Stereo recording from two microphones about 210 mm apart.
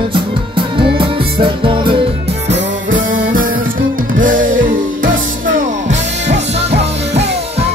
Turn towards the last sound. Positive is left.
turn(degrees=-30)  # may be behind; listen again after turning